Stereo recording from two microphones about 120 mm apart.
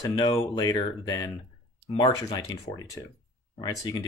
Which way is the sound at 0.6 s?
35° left (ahead or behind).